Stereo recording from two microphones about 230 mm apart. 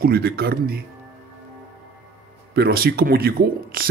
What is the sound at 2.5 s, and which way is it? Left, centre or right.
Speech, right.